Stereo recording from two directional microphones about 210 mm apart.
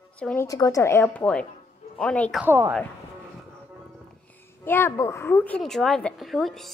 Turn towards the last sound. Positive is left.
turn(degrees=0)  # may be behind; listen again after turning